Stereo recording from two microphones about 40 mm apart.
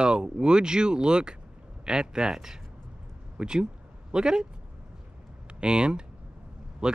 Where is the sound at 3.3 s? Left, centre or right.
Right.